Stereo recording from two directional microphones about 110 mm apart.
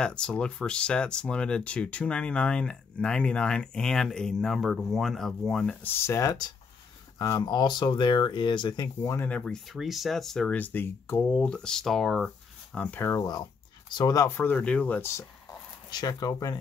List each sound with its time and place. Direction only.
0.0 s speech: 5° left (ahead or behind)
5.9 s speech: 25° left (ahead or behind); by 8.8 s 45° left (ahead or behind)
9.0 s speech: 20° left (ahead or behind)
9.5 s speech: centre (ahead or behind)
12.7 s speech: 10° left (ahead or behind)
13.0 s speech: 30° left (ahead or behind); by 15.0 s 10° left (ahead or behind)
15.0 s speech: 25° left (ahead or behind)
15.9 s speech: 35° left (ahead or behind)